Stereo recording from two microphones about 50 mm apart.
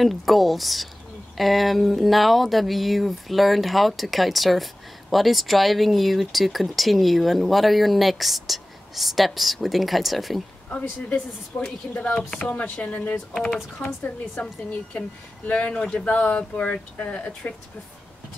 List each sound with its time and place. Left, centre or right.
0.0 s speech: centre
10.7 s a woman's voice: left
12.7 s a woman's voice: left
13.7 s speech: left
14.3 s a woman's voice: left